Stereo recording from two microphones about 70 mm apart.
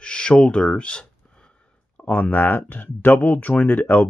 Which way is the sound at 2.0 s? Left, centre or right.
Left.